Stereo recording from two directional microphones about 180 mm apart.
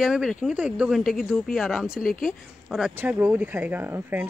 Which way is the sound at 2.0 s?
50° left (ahead or behind).